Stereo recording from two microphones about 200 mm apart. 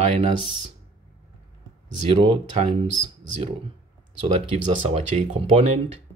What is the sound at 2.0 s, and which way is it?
Speech, 30° right (ahead or behind).